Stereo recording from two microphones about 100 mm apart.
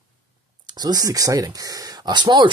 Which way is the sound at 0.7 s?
45° right (ahead or behind).